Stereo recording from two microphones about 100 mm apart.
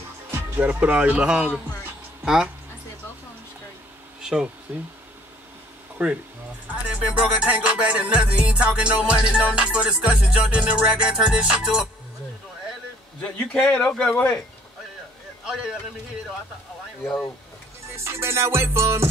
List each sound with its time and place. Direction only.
0.6 s music: 15° right (ahead or behind)
2.2 s speech: 10° right (ahead or behind)
4.2 s bee: 5° right (ahead or behind)
4.7 s music: 15° right (ahead or behind)
6.0 s music: 15° right (ahead or behind)
13.2 s a man's voice: 15° left (ahead or behind)
15.4 s a man's voice: 5° right (ahead or behind)
17.9 s music: 25° right (ahead or behind)